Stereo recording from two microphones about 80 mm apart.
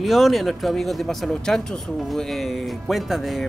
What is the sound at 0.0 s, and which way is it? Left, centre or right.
Speech, centre.